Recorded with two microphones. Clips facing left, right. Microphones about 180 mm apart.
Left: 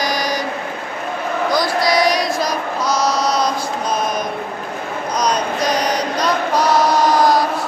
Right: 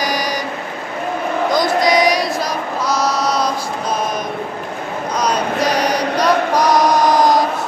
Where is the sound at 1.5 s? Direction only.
20° right (ahead or behind).